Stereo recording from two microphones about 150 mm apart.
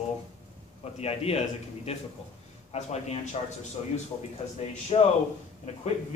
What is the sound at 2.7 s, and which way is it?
Speech, 45° left (ahead or behind).